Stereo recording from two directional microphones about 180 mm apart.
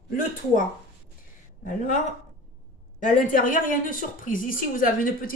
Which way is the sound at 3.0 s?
45° left (ahead or behind).